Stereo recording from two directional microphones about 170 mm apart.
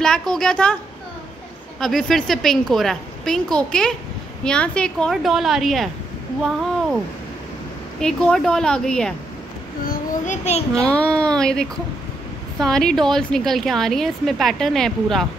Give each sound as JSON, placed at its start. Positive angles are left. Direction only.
{"t": 0.0, "sound": "a woman's voice", "side_deg": 5}
{"t": 1.8, "sound": "a woman's voice", "side_deg": 0}
{"t": 8.0, "sound": "a woman's voice", "side_deg": 5}
{"t": 9.8, "sound": "child singing", "side_deg": 45}
{"t": 10.7, "sound": "a woman's voice", "side_deg": 5}